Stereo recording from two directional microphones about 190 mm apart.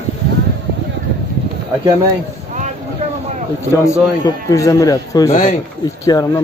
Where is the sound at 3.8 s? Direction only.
15° left (ahead or behind).